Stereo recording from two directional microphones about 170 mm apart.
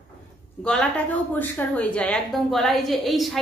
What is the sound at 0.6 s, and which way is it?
A woman's voice, 5° left (ahead or behind).